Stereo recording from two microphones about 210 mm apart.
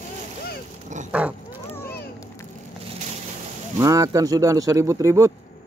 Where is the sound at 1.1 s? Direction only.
5° right (ahead or behind).